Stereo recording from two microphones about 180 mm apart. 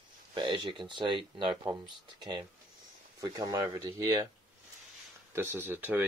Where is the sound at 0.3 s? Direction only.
25° right (ahead or behind).